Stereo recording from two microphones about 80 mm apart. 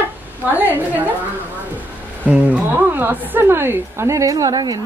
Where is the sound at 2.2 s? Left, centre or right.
Centre.